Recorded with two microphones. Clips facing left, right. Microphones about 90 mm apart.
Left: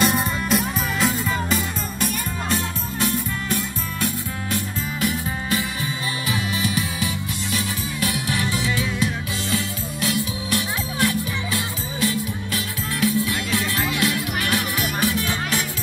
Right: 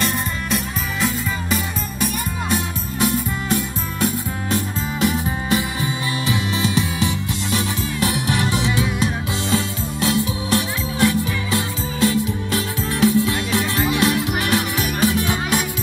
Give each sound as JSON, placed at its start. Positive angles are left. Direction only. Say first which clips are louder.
{"t": 0.0, "sound": "music", "louder": "left 2 dB", "side_deg": 5}
{"t": 2.5, "sound": "music", "louder": "right 2 dB", "side_deg": -20}